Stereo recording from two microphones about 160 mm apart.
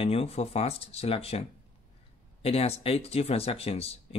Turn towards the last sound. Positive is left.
turn(degrees=40)  # may be behind; listen again after turning